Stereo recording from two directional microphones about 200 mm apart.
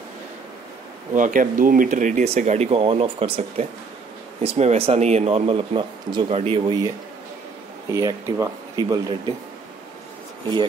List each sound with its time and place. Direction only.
1.1 s speech: 40° right (ahead or behind); by 6.9 s 25° right (ahead or behind)
7.9 s speech: 15° right (ahead or behind)